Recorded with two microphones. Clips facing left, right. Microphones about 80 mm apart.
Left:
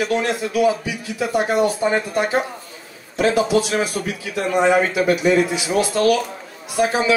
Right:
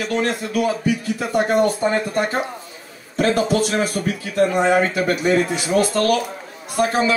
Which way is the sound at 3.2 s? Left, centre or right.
Right.